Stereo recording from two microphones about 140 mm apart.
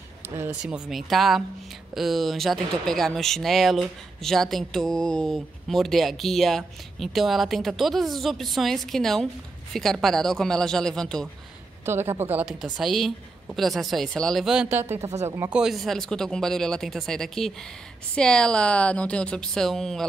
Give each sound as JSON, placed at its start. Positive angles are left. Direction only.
{"t": 0.6, "sound": "speech", "side_deg": -5}
{"t": 11.8, "sound": "speech", "side_deg": -15}
{"t": 14.8, "sound": "speech", "side_deg": -20}
{"t": 15.5, "sound": "speech", "side_deg": 0}